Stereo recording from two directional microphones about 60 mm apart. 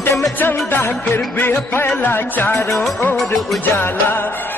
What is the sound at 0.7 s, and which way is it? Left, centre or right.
Music, left.